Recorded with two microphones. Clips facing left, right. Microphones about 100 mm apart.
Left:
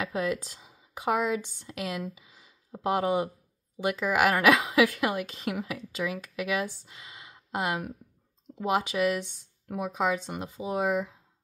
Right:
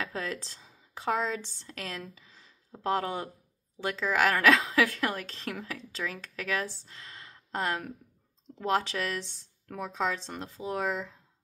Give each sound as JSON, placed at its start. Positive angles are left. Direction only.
{"t": 0.0, "sound": "a woman's voice", "side_deg": 15}